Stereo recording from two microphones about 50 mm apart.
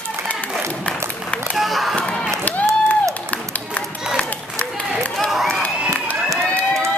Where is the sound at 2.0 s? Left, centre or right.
Left.